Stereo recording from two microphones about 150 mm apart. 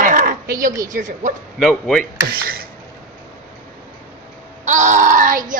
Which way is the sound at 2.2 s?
85° right.